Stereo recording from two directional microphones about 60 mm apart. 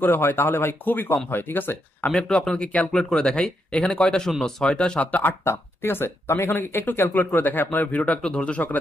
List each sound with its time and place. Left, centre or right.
0.0 s speech: left
2.3 s speech: centre
2.9 s speech: centre; by 5.3 s left
5.4 s speech: left; by 8.6 s centre